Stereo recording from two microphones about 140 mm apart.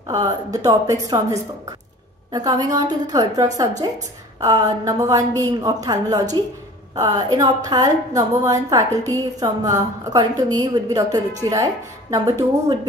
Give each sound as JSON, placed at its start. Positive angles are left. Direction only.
{"t": 0.1, "sound": "a woman's voice", "side_deg": -30}